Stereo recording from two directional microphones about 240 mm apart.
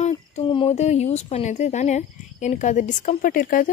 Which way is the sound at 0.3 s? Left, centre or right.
Left.